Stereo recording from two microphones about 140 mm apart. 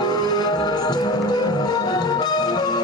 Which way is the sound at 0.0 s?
30° left (ahead or behind).